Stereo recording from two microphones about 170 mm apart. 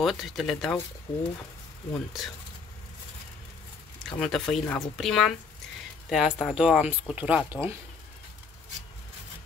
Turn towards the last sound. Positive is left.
turn(degrees=-10)  # may be behind; listen again after turning